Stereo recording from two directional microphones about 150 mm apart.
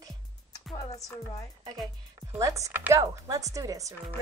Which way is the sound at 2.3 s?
20° right (ahead or behind).